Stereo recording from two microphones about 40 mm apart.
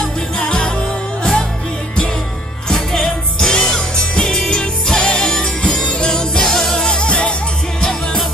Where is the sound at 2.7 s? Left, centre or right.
Centre.